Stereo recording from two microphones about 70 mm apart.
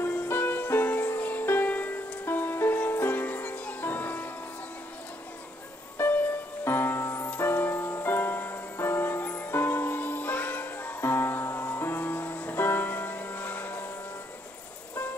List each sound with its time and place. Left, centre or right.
0.0 s music: left
6.6 s music: left